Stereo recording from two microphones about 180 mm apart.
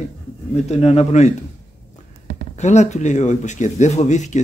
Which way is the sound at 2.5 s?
40° left (ahead or behind).